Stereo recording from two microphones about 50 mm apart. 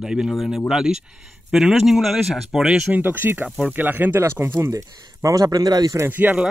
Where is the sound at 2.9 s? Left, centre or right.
Right.